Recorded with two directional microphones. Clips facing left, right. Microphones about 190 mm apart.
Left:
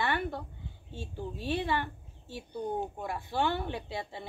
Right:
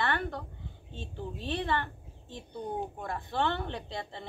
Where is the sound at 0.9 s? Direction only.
20° right (ahead or behind).